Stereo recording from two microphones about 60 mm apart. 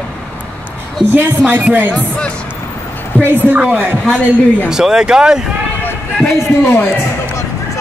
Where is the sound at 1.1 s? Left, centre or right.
Right.